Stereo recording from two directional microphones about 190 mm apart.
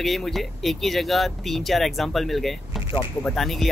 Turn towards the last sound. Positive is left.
turn(degrees=0)  # may be behind; listen again after turning